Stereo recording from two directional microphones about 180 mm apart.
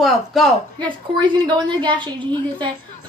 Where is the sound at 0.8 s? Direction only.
25° right (ahead or behind).